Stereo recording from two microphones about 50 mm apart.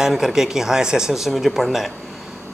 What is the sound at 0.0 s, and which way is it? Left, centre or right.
Speech, centre.